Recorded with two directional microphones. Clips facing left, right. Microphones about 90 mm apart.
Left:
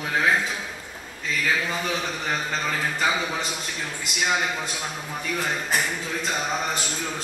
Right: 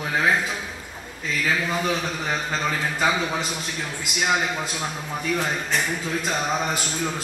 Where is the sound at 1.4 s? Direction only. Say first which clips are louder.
Right 3 dB; 5° right (ahead or behind).